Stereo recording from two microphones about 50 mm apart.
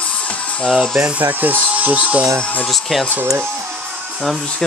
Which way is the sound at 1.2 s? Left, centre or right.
Right.